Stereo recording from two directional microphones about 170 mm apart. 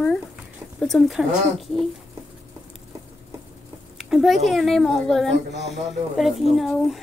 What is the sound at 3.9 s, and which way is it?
A child's voice, centre (ahead or behind).